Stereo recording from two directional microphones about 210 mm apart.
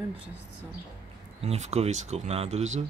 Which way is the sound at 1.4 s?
30° right (ahead or behind).